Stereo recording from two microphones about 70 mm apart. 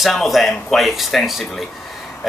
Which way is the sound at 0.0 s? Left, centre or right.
Centre.